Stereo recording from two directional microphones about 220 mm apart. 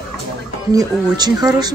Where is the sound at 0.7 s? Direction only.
15° right (ahead or behind).